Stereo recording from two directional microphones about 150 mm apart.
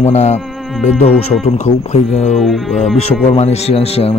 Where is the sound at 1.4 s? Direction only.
45° left (ahead or behind).